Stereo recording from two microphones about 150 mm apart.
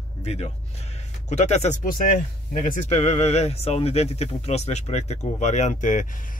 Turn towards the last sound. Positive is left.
turn(degrees=60)  # may be behind; listen again after turning